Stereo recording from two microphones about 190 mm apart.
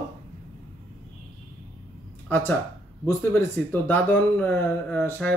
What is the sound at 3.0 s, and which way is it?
Speech, 10° left (ahead or behind).